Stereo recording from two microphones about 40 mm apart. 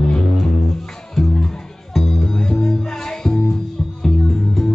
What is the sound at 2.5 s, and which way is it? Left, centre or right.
Music, centre.